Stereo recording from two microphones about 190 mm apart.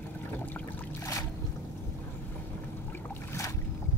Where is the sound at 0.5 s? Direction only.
15° left (ahead or behind).